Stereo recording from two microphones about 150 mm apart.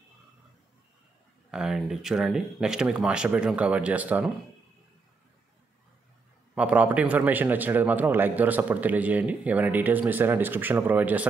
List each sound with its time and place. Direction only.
1.5 s speech: 5° right (ahead or behind)
6.5 s a man's voice: 10° right (ahead or behind)